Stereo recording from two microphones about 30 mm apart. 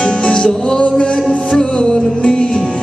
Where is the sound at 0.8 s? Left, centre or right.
Left.